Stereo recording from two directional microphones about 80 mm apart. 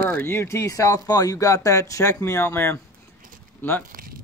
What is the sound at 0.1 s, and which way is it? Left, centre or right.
Speech, left.